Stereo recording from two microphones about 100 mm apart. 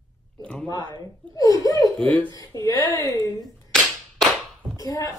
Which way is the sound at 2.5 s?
35° left (ahead or behind).